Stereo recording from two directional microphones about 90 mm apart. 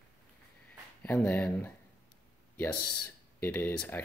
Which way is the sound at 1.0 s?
20° left (ahead or behind).